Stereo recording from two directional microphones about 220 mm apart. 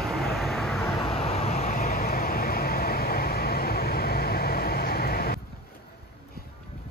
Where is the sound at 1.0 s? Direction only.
25° left (ahead or behind); by 5.4 s 45° left (ahead or behind).